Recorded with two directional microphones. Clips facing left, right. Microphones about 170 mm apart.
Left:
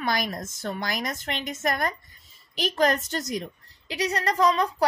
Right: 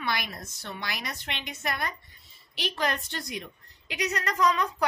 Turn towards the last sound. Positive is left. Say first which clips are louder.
# left 4 dB
turn(degrees=35)  # may be behind; listen again after turning